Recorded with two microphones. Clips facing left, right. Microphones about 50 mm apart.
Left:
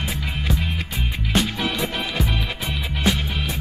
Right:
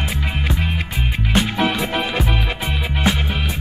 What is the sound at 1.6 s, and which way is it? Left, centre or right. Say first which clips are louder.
Music: right 6 dB; centre.